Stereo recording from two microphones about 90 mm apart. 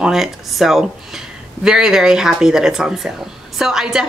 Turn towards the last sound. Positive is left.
turn(degrees=-5)  # may be behind; listen again after turning